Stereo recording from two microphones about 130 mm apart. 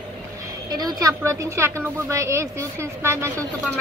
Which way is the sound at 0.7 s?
30° right (ahead or behind).